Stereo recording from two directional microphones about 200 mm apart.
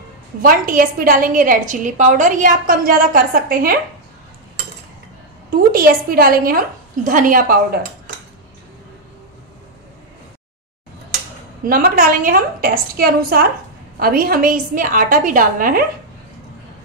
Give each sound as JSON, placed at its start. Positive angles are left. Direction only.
{"t": 0.4, "sound": "a woman's voice", "side_deg": -45}
{"t": 5.5, "sound": "a woman's voice", "side_deg": -45}
{"t": 11.6, "sound": "a woman's voice", "side_deg": -45}